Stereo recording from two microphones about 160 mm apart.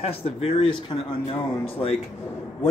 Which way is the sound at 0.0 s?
40° left (ahead or behind).